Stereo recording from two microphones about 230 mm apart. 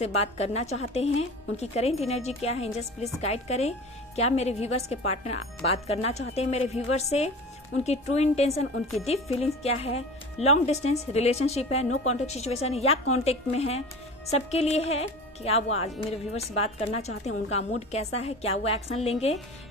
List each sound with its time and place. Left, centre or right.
0.0 s a woman's voice: left